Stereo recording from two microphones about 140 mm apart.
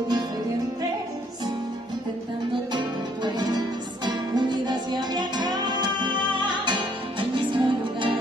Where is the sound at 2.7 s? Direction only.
30° right (ahead or behind).